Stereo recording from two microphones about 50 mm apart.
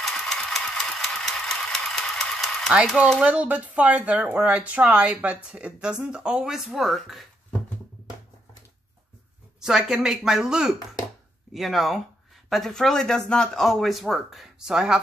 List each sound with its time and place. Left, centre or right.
0.0 s a sound: centre
3.2 s speech: right
5.7 s speech: centre
6.7 s speech: centre
9.6 s speech: centre
11.5 s speech: centre
12.7 s speech: centre
13.7 s speech: centre